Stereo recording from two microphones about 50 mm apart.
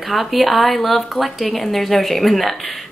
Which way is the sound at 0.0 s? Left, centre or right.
Centre.